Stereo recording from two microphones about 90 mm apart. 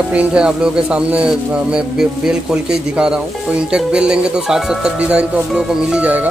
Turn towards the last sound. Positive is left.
turn(degrees=-15)  # may be behind; listen again after turning